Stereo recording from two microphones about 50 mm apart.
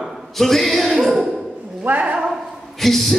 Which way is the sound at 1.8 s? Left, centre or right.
Right.